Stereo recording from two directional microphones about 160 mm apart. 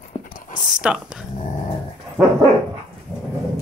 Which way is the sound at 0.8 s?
5° right (ahead or behind).